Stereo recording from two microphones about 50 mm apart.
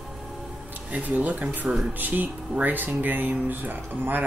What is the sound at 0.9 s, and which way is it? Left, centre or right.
Speech, right.